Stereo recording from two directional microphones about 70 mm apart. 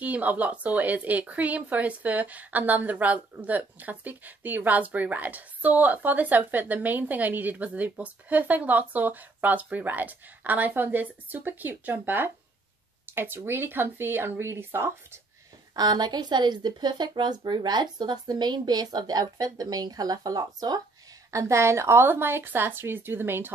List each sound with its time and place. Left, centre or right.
0.0 s a woman's voice: right
15.7 s speech: right
21.3 s a woman's voice: right